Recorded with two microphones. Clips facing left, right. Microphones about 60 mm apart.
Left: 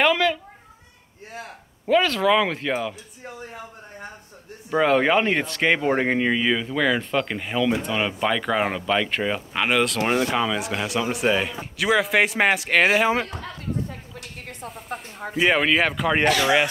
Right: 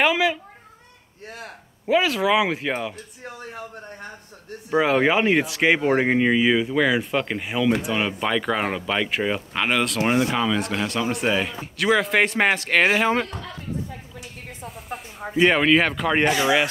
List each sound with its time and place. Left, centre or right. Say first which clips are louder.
0.0 s speech: even; centre
1.9 s speech: left 1 dB; centre
4.6 s speech: even; centre
15.3 s speech: right 2 dB; centre
16.3 s speech: left 2 dB; left